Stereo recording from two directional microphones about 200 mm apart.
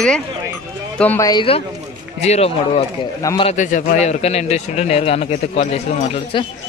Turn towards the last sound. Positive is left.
turn(degrees=30)  # may be behind; listen again after turning